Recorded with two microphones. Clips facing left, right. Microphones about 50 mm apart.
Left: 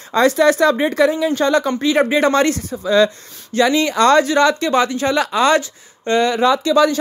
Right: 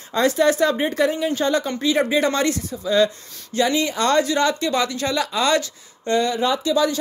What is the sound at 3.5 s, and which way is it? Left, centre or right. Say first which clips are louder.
Speech: left 5 dB; left.